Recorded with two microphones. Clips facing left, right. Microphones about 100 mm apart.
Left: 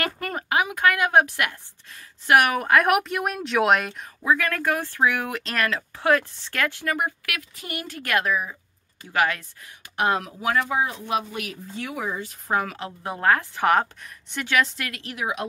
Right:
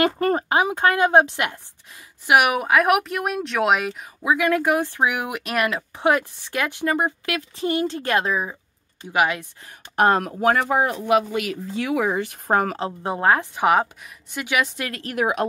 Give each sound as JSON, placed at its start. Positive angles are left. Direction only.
{"t": 0.2, "sound": "speech", "side_deg": -30}
{"t": 9.6, "sound": "speech", "side_deg": -40}
{"t": 12.5, "sound": "a woman's voice", "side_deg": -35}
{"t": 14.9, "sound": "a woman's voice", "side_deg": -45}